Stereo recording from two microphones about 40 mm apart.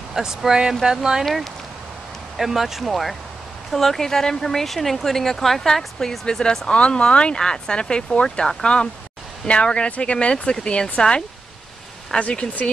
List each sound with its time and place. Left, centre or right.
0.1 s speech: centre
1.2 s speech: centre
2.8 s speech: centre; by 11.2 s left
12.2 s speech: left